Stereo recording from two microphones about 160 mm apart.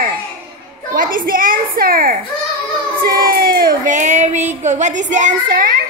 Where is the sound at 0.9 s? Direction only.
60° right (ahead or behind).